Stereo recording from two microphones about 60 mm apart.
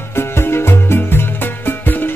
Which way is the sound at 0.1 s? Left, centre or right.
Left.